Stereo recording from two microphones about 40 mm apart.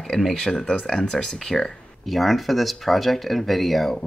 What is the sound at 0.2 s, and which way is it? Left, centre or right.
Speech, centre.